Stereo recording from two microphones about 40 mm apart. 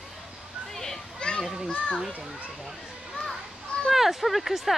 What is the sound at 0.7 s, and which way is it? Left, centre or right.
Children playing, centre.